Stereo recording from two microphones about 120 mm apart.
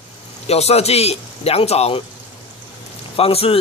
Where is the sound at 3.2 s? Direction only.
55° left (ahead or behind).